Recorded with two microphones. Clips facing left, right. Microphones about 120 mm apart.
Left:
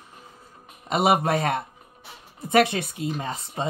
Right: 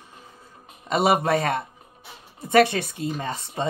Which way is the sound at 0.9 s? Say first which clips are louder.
Right 1 dB; 35° right (ahead or behind).